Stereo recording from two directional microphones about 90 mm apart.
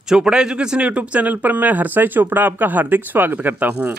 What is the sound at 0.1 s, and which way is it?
Speech, 10° right (ahead or behind).